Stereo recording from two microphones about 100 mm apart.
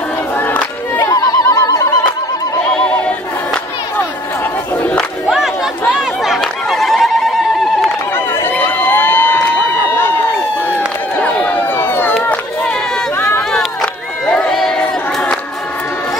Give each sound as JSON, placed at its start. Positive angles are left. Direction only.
{"t": 0.4, "sound": "crowd", "side_deg": 15}
{"t": 0.9, "sound": "a sound", "side_deg": 40}
{"t": 4.8, "sound": "crowd", "side_deg": 10}
{"t": 5.3, "sound": "chatter", "side_deg": -5}
{"t": 8.4, "sound": "crowd", "side_deg": 20}
{"t": 11.1, "sound": "run", "side_deg": 15}
{"t": 13.5, "sound": "crowd", "side_deg": 5}